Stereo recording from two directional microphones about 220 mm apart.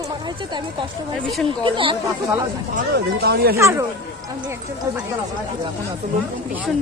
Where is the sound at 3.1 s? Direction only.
45° right (ahead or behind).